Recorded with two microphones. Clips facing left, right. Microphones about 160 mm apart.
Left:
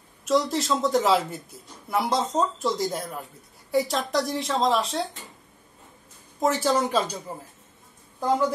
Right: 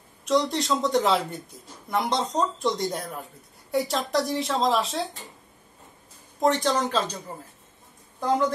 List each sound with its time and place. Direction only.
0.2 s speech: centre (ahead or behind)
6.4 s speech: 5° left (ahead or behind)